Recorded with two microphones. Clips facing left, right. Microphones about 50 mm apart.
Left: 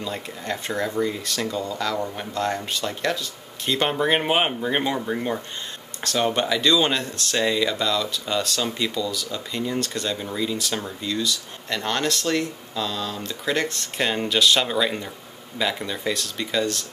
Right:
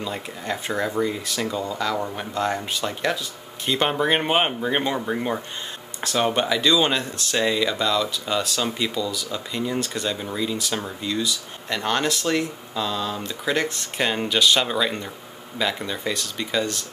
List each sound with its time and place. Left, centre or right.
0.0 s speech: centre